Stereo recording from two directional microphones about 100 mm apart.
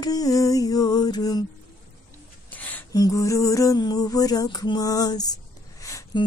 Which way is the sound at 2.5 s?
15° left (ahead or behind).